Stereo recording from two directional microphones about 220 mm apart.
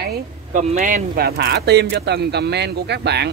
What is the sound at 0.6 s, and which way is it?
Speech, 35° right (ahead or behind).